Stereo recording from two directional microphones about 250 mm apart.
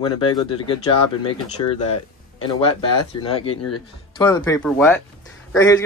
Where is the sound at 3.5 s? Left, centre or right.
Left.